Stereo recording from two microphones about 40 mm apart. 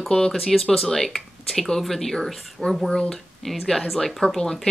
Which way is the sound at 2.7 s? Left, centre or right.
Centre.